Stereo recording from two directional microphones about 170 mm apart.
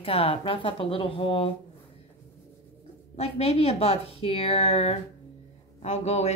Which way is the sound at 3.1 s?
35° left (ahead or behind).